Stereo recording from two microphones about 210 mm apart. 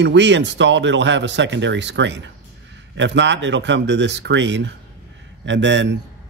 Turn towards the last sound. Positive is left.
turn(degrees=-60)  # may be behind; listen again after turning